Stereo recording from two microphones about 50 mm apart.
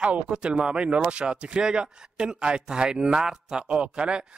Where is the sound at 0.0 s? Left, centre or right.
Right.